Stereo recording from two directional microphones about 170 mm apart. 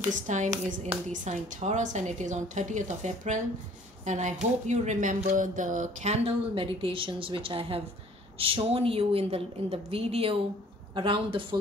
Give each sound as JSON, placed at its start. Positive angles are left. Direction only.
{"t": 0.1, "sound": "a woman's voice", "side_deg": -45}